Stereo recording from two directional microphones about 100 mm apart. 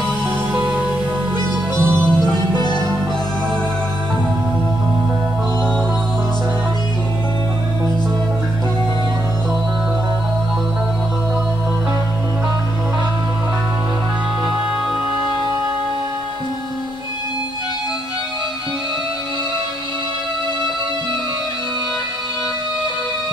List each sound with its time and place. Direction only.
0.5 s music: 15° right (ahead or behind)
1.8 s music: 5° left (ahead or behind)